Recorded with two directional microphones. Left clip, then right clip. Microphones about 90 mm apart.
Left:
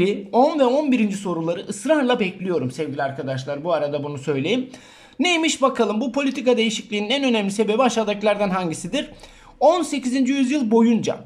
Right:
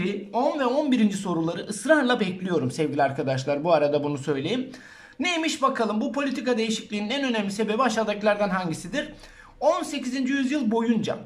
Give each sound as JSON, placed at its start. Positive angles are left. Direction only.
{"t": 0.3, "sound": "speech", "side_deg": 50}
{"t": 0.7, "sound": "speech", "side_deg": 25}
{"t": 1.0, "sound": "speech", "side_deg": 10}
{"t": 2.8, "sound": "speech", "side_deg": -10}
{"t": 4.3, "sound": "speech", "side_deg": 25}
{"t": 5.2, "sound": "speech", "side_deg": 35}
{"t": 9.6, "sound": "speech", "side_deg": 45}